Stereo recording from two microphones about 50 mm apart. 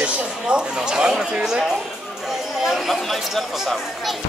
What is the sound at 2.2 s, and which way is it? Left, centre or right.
Chatter, centre.